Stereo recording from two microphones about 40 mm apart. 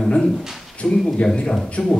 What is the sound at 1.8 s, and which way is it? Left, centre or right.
Speech, centre.